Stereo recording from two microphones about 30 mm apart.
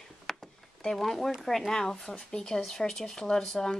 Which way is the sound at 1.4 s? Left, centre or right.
Centre.